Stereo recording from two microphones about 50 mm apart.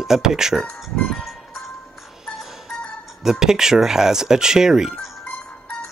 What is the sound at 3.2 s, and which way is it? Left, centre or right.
Speech, centre.